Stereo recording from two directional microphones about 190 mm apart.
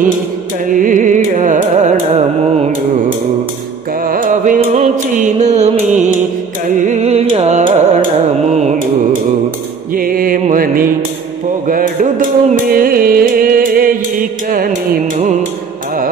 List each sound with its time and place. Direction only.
0.7 s carnatic music: 45° right (ahead or behind)
4.0 s music: 45° right (ahead or behind)
6.9 s carnatic music: 35° right (ahead or behind)
9.9 s music: 50° right (ahead or behind)